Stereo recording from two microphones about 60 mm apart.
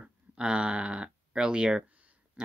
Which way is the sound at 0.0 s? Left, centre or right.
Centre.